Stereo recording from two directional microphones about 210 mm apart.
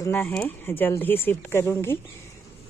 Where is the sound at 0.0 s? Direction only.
10° left (ahead or behind).